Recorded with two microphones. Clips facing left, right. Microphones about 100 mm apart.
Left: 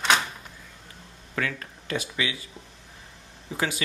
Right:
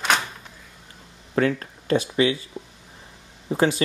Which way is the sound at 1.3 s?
35° right (ahead or behind).